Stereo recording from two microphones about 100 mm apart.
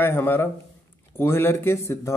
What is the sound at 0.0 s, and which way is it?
Speech, 20° left (ahead or behind).